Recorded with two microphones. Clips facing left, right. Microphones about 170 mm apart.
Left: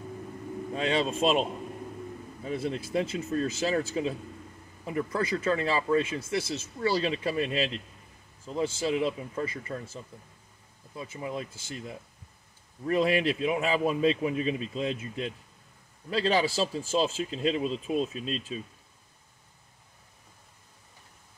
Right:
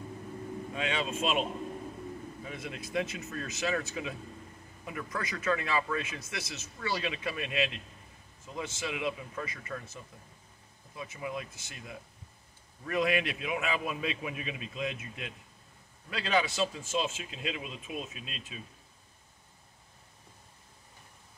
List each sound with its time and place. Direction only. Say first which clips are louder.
0.7 s speech: left 6 dB; 35° left (ahead or behind)
2.4 s speech: left 13 dB; 30° left (ahead or behind)
11.0 s speech: left 3 dB; 30° left (ahead or behind)